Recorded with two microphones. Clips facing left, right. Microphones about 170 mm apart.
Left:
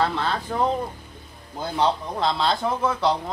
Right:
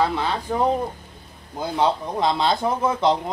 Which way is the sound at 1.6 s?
15° right (ahead or behind).